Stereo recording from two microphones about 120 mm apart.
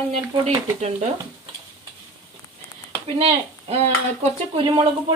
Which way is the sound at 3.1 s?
60° right (ahead or behind).